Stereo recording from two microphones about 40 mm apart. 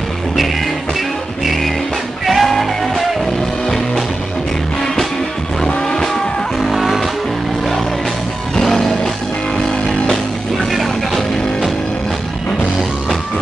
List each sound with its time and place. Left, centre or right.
1.4 s music: centre
5.7 s vehicle: centre
8.5 s music: centre
10.7 s music: centre